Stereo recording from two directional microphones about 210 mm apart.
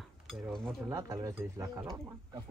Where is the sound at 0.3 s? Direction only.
Centre (ahead or behind).